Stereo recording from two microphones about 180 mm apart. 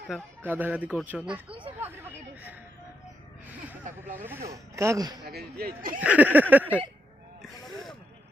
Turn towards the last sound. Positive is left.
turn(degrees=-10)  # may be behind; listen again after turning